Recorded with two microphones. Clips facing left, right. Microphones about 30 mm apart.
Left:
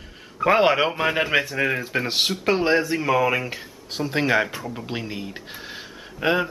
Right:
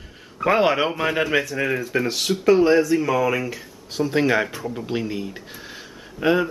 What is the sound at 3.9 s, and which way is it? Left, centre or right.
Speech, centre.